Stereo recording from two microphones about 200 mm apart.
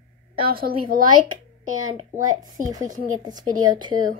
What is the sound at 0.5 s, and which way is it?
Speech, 45° right (ahead or behind).